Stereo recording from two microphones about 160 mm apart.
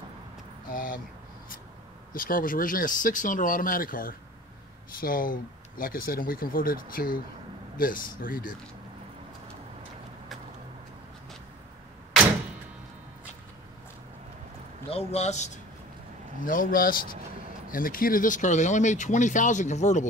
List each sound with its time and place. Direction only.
0.7 s a sound: 60° left (ahead or behind)
2.1 s speech: 60° left (ahead or behind)
14.9 s speech: 40° left (ahead or behind)
16.4 s speech: 60° left (ahead or behind)